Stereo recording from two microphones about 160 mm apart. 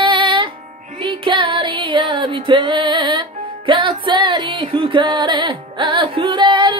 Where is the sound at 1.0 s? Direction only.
30° right (ahead or behind).